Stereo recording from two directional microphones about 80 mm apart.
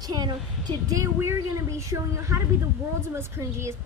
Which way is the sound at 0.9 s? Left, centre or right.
Right.